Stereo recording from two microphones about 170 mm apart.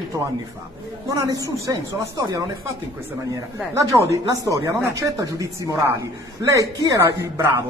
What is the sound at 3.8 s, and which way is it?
Speech, 20° right (ahead or behind).